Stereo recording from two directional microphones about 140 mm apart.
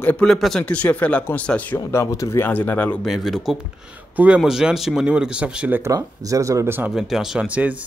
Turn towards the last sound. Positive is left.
turn(degrees=-10)  # may be behind; listen again after turning